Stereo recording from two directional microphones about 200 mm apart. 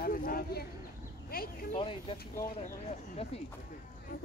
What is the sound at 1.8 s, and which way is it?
Speech, 25° left (ahead or behind).